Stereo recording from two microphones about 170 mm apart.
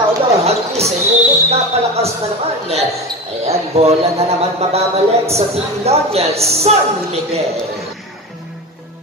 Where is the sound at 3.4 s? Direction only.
35° right (ahead or behind).